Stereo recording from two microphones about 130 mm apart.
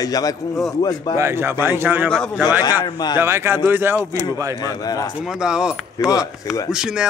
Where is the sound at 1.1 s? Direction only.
20° right (ahead or behind).